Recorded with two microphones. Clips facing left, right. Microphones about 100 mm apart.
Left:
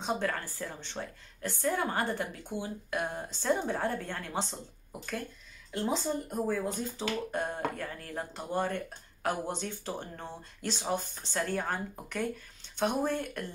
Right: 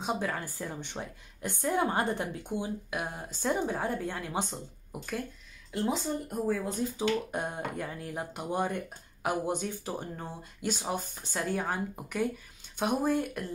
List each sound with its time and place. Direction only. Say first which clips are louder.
0.0 s speech: even; 10° right (ahead or behind)
5.7 s speech: right 1 dB; centre (ahead or behind)